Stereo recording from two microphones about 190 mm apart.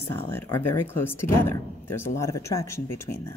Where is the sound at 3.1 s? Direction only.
50° left (ahead or behind).